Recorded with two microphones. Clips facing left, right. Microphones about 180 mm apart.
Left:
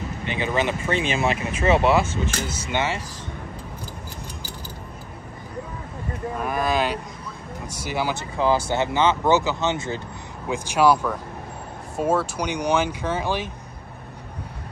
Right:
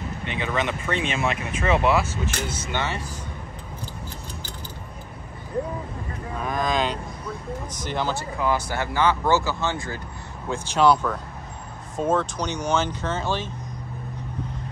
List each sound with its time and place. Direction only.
0.2 s speech: centre (ahead or behind)
2.7 s speech: 15° left (ahead or behind)
6.4 s speech: 10° left (ahead or behind)
8.2 s speech: 30° left (ahead or behind)
10.5 s speech: 10° left (ahead or behind)